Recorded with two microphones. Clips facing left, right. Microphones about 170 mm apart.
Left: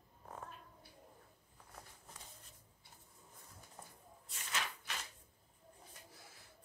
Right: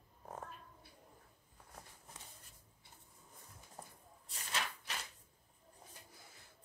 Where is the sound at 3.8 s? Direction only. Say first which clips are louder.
Right 3 dB; 35° right (ahead or behind).